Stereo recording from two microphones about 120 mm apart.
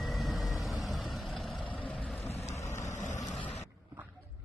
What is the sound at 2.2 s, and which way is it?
Vehicle, 60° left (ahead or behind).